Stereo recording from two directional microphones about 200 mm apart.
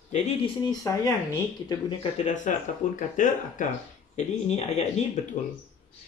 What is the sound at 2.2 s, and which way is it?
Speech, 40° left (ahead or behind).